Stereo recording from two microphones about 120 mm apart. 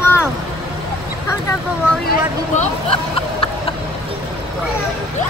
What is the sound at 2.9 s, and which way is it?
Vehicle, 50° left (ahead or behind).